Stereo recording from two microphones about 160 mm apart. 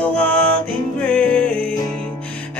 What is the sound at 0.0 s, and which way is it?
Music, 10° left (ahead or behind).